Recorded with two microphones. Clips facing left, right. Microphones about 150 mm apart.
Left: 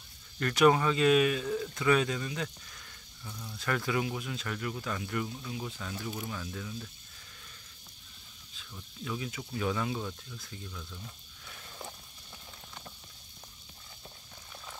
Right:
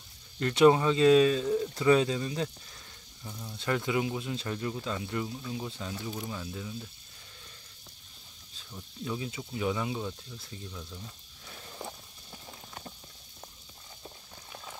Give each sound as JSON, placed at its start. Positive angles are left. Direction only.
{"t": 0.4, "sound": "speech", "side_deg": -25}
{"t": 8.7, "sound": "speech", "side_deg": -25}